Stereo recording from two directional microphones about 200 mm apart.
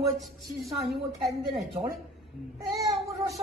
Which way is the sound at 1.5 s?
30° right (ahead or behind).